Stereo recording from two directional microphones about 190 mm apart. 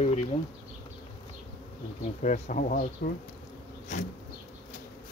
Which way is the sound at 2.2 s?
40° left (ahead or behind).